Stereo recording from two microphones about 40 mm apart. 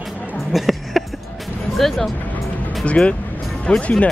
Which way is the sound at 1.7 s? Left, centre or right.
Centre.